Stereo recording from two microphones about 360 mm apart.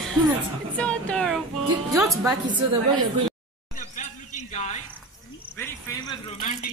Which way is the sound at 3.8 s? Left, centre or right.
Centre.